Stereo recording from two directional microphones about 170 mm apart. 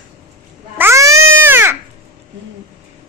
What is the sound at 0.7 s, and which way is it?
Baby cry, 15° right (ahead or behind).